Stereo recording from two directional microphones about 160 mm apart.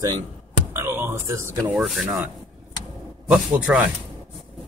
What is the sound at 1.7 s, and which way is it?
Speech, centre (ahead or behind).